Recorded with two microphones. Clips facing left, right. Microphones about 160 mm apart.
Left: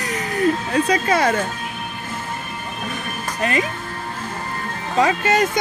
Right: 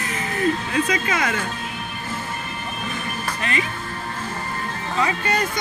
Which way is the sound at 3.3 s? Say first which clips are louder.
Left 6 dB; 45° left (ahead or behind).